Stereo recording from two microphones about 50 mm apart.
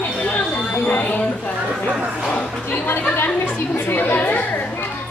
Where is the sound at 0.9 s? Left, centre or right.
Left.